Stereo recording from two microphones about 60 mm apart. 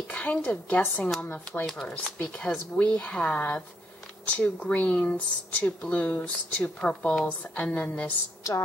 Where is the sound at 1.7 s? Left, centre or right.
Centre.